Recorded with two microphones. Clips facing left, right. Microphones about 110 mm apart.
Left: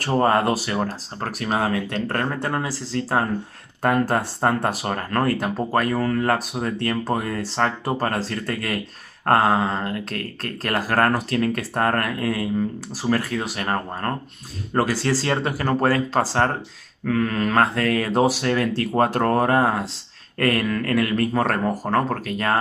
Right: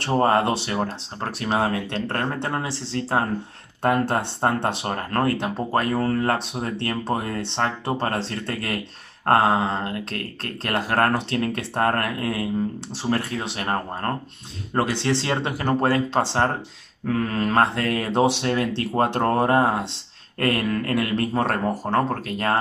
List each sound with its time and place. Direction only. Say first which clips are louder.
0.2 s speech: left 1 dB; 25° right (ahead or behind)